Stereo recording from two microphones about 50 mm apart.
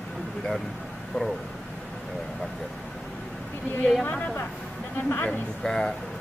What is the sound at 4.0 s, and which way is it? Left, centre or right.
Speech, left.